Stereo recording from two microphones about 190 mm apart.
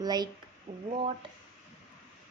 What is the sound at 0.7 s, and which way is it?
Speech, 45° right (ahead or behind).